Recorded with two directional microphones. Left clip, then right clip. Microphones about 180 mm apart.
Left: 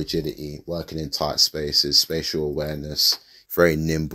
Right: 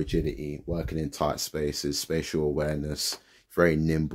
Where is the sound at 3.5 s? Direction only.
15° left (ahead or behind).